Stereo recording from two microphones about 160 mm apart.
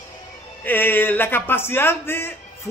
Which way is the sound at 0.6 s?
10° left (ahead or behind).